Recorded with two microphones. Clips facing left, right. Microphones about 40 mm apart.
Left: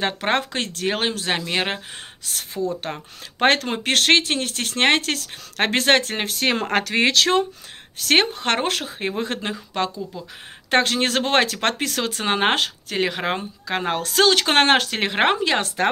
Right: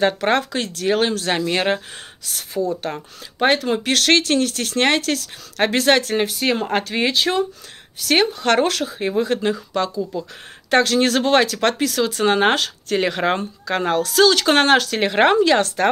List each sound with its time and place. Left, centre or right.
0.0 s speech: left
2.2 s speech: left
3.3 s speech: left
3.6 s speech: left
6.2 s speech: left
8.0 s speech: left
10.1 s speech: centre
10.7 s speech: left
12.3 s speech: left
12.8 s speech: centre
13.7 s speech: centre
13.9 s speech: left